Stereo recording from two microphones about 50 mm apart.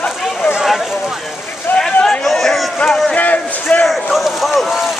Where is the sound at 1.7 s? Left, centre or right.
Left.